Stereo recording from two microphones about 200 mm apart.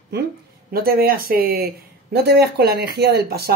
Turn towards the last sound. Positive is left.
turn(degrees=-50)  # may be behind; listen again after turning